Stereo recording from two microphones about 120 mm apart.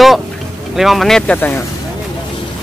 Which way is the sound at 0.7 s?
Centre (ahead or behind).